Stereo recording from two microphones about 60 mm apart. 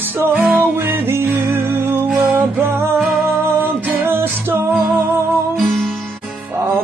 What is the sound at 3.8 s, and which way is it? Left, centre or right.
Music, right.